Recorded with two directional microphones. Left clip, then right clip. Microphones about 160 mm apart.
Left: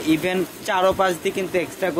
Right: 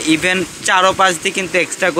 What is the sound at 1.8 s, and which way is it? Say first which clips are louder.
Speech: right 8 dB; 25° right (ahead or behind).